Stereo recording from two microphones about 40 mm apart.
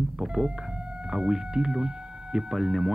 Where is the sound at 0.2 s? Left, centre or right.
Centre.